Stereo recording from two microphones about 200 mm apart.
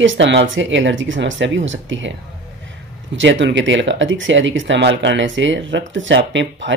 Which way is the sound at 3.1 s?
65° right (ahead or behind).